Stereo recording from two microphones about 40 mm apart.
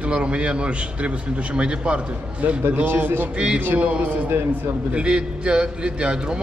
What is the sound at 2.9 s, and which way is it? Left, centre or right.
Speech, right.